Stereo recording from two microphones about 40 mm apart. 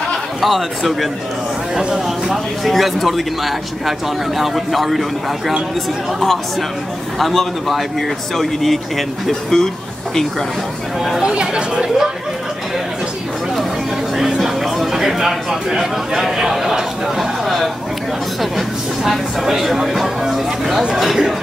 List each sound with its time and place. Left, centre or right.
0.4 s speech: centre
1.8 s speech: centre
2.6 s speech: centre
6.1 s speech: centre
11.1 s speech: right
14.4 s a sound: centre
19.0 s speech: centre